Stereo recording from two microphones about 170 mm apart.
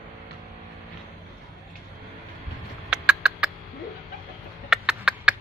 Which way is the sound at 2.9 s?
5° right (ahead or behind).